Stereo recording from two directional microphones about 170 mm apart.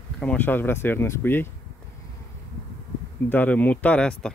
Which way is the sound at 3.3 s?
10° left (ahead or behind).